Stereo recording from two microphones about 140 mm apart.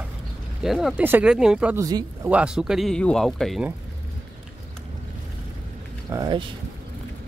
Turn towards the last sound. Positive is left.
turn(degrees=-30)  # may be behind; listen again after turning